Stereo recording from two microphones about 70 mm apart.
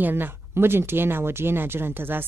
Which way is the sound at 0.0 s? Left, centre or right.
Right.